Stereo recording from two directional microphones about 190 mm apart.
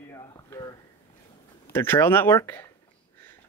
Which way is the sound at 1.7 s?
10° left (ahead or behind).